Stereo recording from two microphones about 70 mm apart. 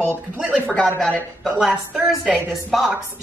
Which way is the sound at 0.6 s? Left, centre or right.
Centre.